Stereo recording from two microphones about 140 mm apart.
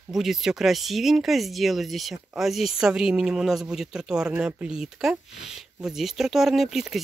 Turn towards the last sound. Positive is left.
turn(degrees=-5)  # may be behind; listen again after turning